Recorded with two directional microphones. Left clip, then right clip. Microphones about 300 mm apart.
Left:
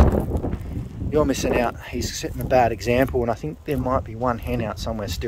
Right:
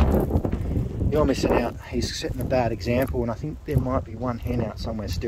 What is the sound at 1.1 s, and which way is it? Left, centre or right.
Speech, centre.